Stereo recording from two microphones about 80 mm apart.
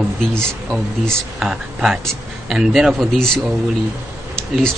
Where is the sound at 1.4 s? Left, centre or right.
Centre.